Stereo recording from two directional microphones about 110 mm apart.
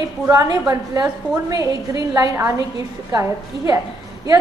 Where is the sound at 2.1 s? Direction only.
30° right (ahead or behind).